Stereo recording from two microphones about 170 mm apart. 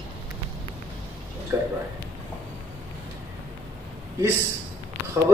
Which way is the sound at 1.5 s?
15° right (ahead or behind).